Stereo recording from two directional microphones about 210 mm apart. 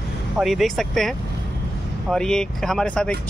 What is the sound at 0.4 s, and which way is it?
Speech, centre (ahead or behind).